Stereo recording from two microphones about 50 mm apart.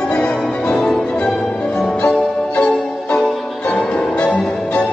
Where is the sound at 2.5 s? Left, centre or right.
Centre.